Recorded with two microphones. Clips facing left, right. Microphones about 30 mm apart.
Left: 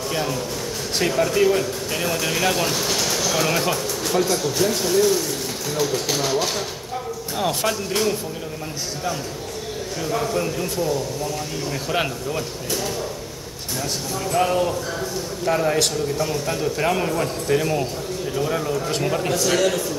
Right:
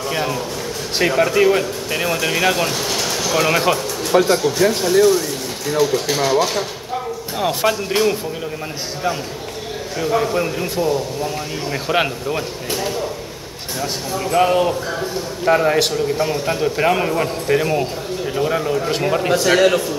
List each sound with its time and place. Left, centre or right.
0.1 s a man's voice: centre
4.4 s speech: centre
7.3 s speech: centre
9.9 s a man's voice: right